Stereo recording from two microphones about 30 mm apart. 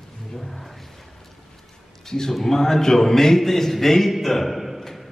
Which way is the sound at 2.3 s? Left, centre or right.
Centre.